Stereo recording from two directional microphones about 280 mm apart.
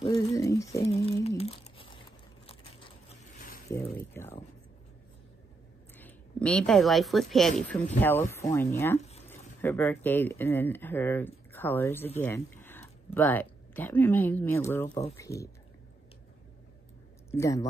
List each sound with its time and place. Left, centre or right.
0.3 s speech: centre
1.0 s crumpling: centre
3.7 s a sound: centre
5.9 s speech: centre
17.3 s speech: centre